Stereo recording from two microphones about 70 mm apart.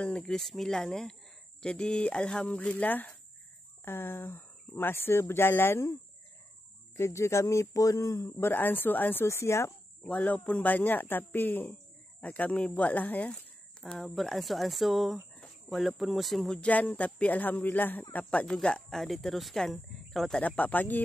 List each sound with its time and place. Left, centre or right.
0.0 s speech: centre
3.8 s speech: left
7.0 s speech: left
9.2 s speech: left
10.0 s speech: centre
13.3 s a sound: centre
13.9 s speech: centre
16.5 s speech: centre
20.4 s speech: left